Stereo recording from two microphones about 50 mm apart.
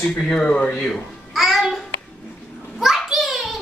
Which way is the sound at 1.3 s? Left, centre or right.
Centre.